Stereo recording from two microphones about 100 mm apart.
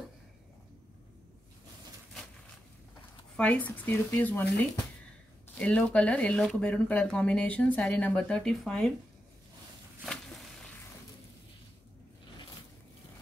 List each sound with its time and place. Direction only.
3.3 s speech: 15° left (ahead or behind)
5.6 s speech: 10° left (ahead or behind)
8.2 s speech: 10° left (ahead or behind)